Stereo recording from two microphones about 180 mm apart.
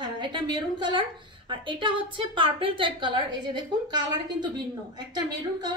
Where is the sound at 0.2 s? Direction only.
25° right (ahead or behind).